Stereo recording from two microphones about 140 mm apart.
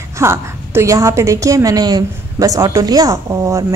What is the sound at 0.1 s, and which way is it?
A woman's voice, 20° right (ahead or behind).